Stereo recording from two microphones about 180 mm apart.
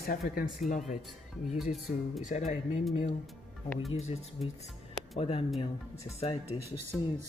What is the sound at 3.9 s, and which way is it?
Speech, 35° left (ahead or behind).